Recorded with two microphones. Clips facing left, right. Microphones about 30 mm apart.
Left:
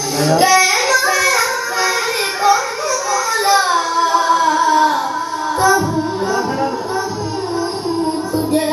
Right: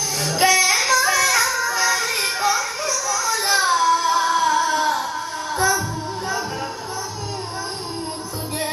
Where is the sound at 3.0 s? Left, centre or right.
Left.